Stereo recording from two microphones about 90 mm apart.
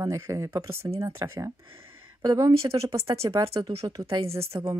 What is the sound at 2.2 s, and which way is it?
Speech, 45° right (ahead or behind).